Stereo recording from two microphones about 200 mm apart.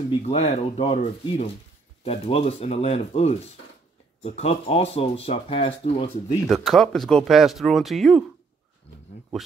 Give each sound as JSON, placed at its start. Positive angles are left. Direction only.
{"t": 0.2, "sound": "speech", "side_deg": 30}
{"t": 6.4, "sound": "speech", "side_deg": 0}